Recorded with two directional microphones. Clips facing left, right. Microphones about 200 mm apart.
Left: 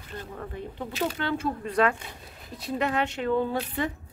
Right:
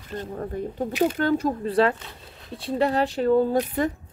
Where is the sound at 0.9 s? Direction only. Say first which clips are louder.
Right 7 dB; 15° right (ahead or behind).